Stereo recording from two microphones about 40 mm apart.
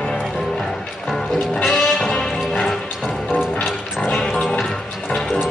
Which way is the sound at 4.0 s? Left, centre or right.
Centre.